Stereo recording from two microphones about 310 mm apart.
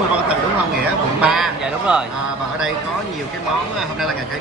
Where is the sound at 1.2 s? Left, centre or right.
Centre.